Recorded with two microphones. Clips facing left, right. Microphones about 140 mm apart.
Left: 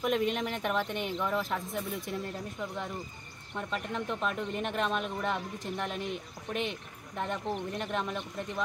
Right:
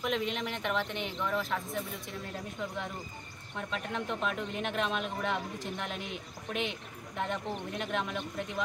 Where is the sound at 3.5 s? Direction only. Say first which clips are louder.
Left 1 dB; centre (ahead or behind).